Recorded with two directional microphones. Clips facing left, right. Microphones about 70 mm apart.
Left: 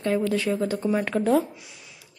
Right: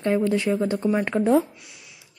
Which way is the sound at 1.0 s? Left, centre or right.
Centre.